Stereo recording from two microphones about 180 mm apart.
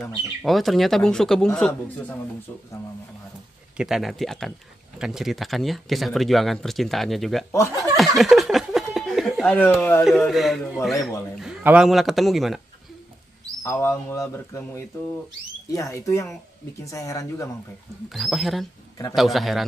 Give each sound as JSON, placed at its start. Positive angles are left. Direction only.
{"t": 0.0, "sound": "speech", "side_deg": 0}
{"t": 3.7, "sound": "speech", "side_deg": -5}
{"t": 7.9, "sound": "a sound", "side_deg": 0}
{"t": 9.8, "sound": "speech", "side_deg": 10}
{"t": 10.0, "sound": "speech", "side_deg": 0}
{"t": 13.6, "sound": "speech", "side_deg": 15}
{"t": 18.1, "sound": "speech", "side_deg": 0}